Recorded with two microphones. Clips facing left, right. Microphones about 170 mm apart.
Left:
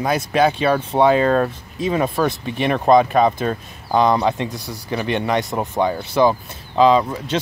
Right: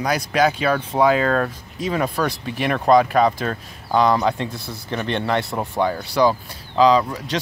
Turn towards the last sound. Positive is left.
turn(degrees=25)  # may be behind; listen again after turning